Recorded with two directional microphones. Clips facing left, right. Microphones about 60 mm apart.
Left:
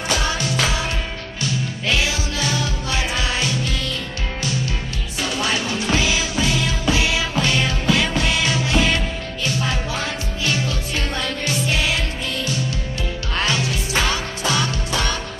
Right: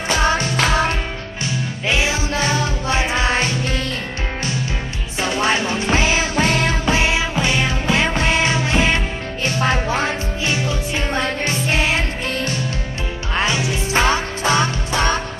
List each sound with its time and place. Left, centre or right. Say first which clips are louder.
0.2 s music: right 4 dB; right
1.9 s music: right 3 dB; right
5.2 s music: right 4 dB; right
10.5 s music: right 2 dB; right
13.3 s music: right 2 dB; centre
13.9 s music: right 5 dB; right